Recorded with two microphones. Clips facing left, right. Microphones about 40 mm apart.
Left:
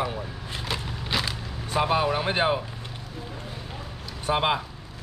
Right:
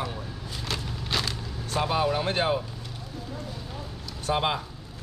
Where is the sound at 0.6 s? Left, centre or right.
Centre.